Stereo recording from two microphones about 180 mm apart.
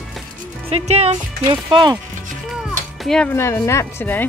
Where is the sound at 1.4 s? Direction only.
25° right (ahead or behind).